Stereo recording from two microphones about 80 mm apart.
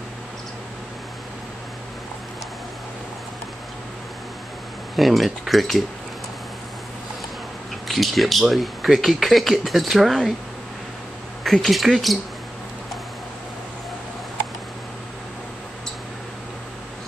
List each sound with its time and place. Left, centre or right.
4.9 s speech: centre
7.9 s speech: centre
11.4 s speech: centre